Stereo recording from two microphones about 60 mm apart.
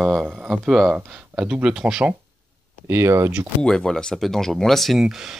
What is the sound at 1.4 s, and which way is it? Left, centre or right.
Speech, centre.